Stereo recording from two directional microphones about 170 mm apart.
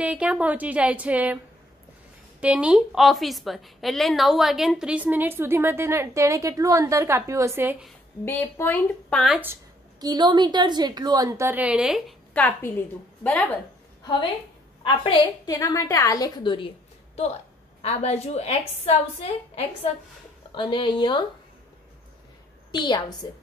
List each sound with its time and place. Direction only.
0.0 s a woman's voice: 5° right (ahead or behind)
2.4 s a woman's voice: 5° right (ahead or behind)
8.3 s speech: 10° left (ahead or behind)
9.9 s a woman's voice: 25° right (ahead or behind); by 12.0 s 5° right (ahead or behind)
12.4 s speech: 10° left (ahead or behind)
14.8 s a woman's voice: 30° left (ahead or behind)
15.5 s a woman's voice: 20° left (ahead or behind)
22.7 s a woman's voice: 25° left (ahead or behind)